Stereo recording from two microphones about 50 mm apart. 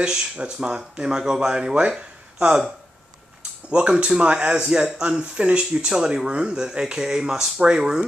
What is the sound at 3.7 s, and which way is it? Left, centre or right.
Speech, right.